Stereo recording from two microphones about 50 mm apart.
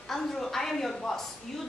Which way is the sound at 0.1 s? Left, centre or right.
Centre.